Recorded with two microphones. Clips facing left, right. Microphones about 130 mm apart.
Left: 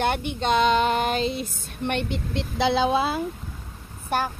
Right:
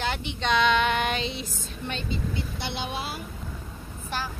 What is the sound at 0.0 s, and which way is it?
Female singing, 55° left (ahead or behind).